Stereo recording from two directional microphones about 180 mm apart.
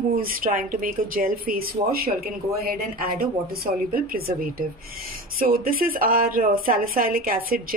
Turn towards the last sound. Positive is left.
turn(degrees=-55)  # may be behind; listen again after turning